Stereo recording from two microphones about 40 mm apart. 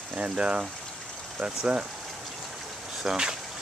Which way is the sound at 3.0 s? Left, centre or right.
Centre.